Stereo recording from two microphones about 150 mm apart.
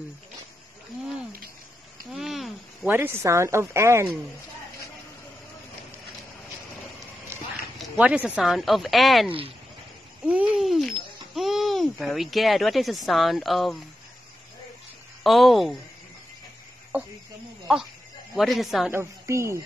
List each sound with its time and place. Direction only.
2.1 s a sound: centre (ahead or behind)
2.9 s speech: 15° right (ahead or behind)
7.8 s speech: 10° right (ahead or behind)
10.2 s a sound: 5° right (ahead or behind)
11.3 s speech: centre (ahead or behind)
15.2 s speech: centre (ahead or behind)
16.9 s speech: 10° right (ahead or behind)
18.3 s speech: centre (ahead or behind)
18.9 s a woman's voice: 20° right (ahead or behind)